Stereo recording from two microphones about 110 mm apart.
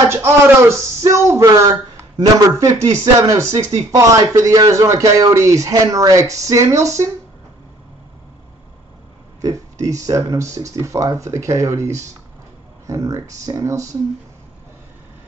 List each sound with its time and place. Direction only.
0.1 s speech: 25° right (ahead or behind)
9.4 s speech: 30° right (ahead or behind)